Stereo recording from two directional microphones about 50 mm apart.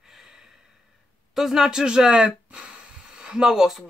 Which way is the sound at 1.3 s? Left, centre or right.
Centre.